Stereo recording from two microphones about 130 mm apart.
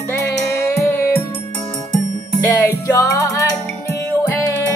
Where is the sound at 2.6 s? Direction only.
25° left (ahead or behind).